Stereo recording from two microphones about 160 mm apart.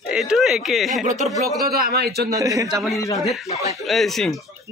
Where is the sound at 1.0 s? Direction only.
50° right (ahead or behind).